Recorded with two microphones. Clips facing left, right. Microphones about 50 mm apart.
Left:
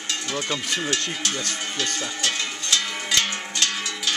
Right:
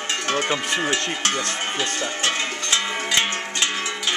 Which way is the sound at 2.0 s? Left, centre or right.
Right.